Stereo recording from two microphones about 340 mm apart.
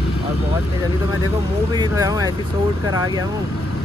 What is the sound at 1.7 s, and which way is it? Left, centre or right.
Speech, centre.